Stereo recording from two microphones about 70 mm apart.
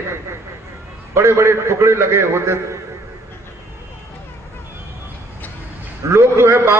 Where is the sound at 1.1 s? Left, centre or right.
Right.